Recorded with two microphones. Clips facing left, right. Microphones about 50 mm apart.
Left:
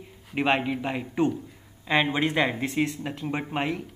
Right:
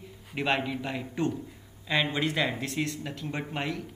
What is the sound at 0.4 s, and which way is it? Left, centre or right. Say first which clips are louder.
Speech: left 4 dB; left.